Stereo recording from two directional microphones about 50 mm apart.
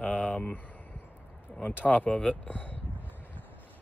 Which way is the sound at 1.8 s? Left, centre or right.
Left.